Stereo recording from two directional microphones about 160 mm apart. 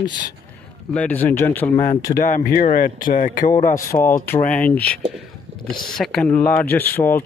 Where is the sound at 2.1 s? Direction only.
45° left (ahead or behind).